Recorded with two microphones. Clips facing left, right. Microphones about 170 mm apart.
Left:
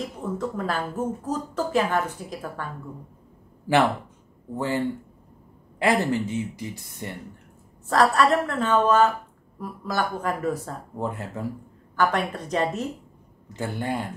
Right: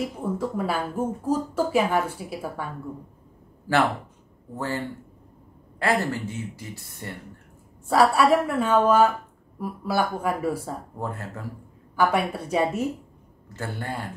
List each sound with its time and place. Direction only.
0.0 s speech: 10° right (ahead or behind)
4.6 s a woman's voice: 20° left (ahead or behind)
7.9 s speech: 10° right (ahead or behind)
11.0 s a woman's voice: 20° left (ahead or behind)
11.9 s speech: 10° right (ahead or behind)
13.5 s a woman's voice: 20° left (ahead or behind)